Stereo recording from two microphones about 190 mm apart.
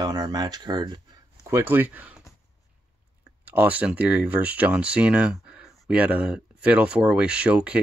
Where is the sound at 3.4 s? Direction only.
10° right (ahead or behind).